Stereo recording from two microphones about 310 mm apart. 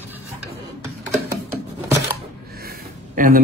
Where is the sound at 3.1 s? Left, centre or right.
Right.